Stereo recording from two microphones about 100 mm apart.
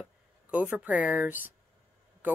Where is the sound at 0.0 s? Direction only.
15° right (ahead or behind).